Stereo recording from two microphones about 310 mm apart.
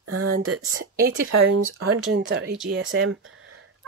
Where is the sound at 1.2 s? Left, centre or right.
Right.